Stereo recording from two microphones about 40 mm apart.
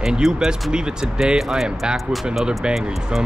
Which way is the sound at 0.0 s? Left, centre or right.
Centre.